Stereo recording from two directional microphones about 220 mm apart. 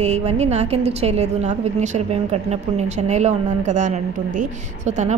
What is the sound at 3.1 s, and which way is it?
Speech, 35° right (ahead or behind).